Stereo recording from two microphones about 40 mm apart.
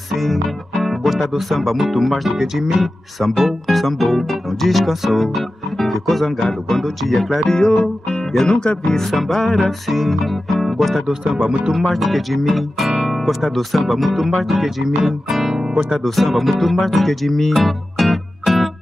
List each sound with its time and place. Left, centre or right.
0.1 s speech: centre; by 8.9 s left
8.9 s speech: centre
11.3 s speech: centre
11.7 s speech: centre
13.0 s music: centre
13.3 s speech: centre
16.0 s music: centre